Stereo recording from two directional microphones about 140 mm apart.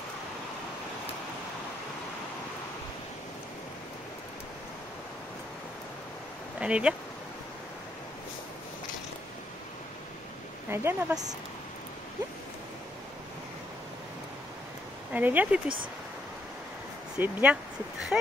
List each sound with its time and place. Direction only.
6.6 s speech: 10° right (ahead or behind)
10.7 s speech: 15° right (ahead or behind)
15.1 s speech: 10° right (ahead or behind)
17.2 s speech: 10° right (ahead or behind)